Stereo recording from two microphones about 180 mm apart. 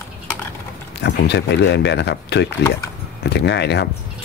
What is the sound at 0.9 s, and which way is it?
Speech, 70° left (ahead or behind).